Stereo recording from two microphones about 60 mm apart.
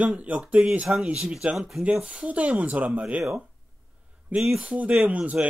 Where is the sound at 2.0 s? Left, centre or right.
Right.